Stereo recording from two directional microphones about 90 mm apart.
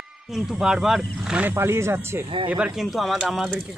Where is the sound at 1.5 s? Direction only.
30° right (ahead or behind).